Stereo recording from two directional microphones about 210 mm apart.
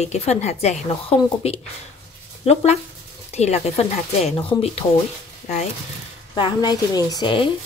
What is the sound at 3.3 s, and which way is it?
A woman's voice, 30° left (ahead or behind).